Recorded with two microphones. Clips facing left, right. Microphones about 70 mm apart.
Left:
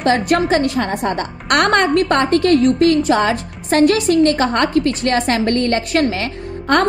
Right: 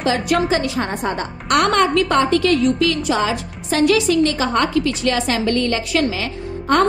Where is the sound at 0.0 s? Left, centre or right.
Left.